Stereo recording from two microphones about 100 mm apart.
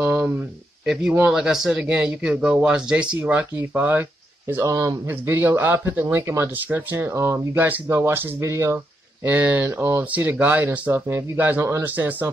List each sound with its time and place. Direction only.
0.0 s a sound: 20° right (ahead or behind)
1.3 s speech: 5° right (ahead or behind); by 4.6 s 20° right (ahead or behind)
4.6 s speech: 35° right (ahead or behind)
5.0 s speech: 20° right (ahead or behind)
8.7 s speech: 15° right (ahead or behind)